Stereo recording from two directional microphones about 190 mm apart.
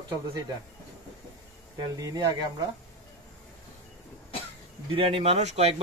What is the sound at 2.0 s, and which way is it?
Speech, 20° right (ahead or behind).